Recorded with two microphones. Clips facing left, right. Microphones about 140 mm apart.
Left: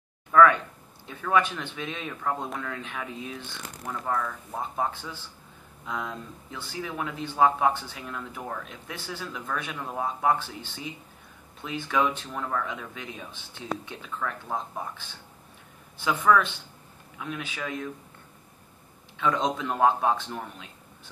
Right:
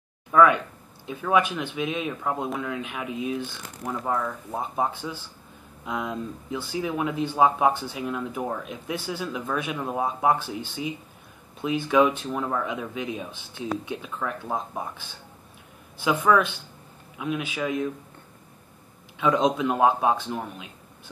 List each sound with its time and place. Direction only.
0.3 s speech: 15° right (ahead or behind)
19.1 s speech: 10° right (ahead or behind)